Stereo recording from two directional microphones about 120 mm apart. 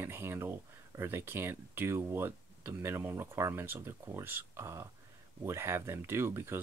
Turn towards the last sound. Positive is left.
turn(degrees=-20)  # may be behind; listen again after turning